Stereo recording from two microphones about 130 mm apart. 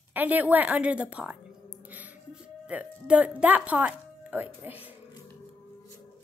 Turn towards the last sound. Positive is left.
turn(degrees=-15)  # may be behind; listen again after turning